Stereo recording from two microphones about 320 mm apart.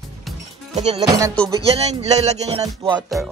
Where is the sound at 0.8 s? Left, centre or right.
Centre.